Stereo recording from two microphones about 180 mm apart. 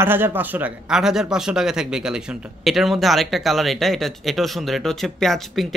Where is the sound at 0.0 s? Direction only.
10° right (ahead or behind).